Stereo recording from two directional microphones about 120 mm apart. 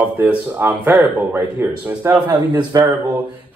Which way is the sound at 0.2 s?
15° right (ahead or behind).